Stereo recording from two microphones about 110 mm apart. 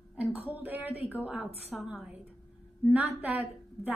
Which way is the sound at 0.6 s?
15° right (ahead or behind).